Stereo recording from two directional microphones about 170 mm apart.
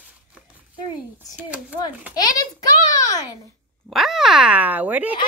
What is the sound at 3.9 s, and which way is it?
Speech, centre (ahead or behind).